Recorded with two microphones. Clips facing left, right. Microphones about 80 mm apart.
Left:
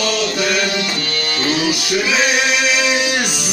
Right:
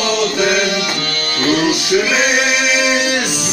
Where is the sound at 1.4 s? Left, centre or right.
Right.